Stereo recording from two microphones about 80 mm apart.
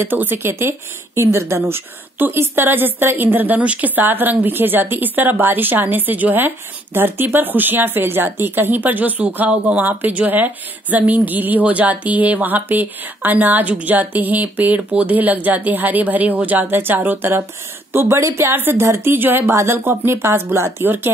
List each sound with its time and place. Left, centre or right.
0.0 s a woman's voice: right